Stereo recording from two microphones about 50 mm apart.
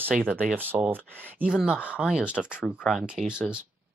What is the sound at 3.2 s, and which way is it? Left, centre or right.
Speech, centre.